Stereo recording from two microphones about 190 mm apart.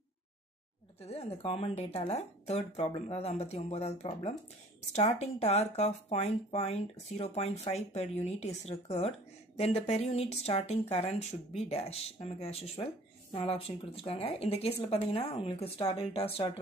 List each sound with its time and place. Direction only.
1.0 s speech: 35° left (ahead or behind)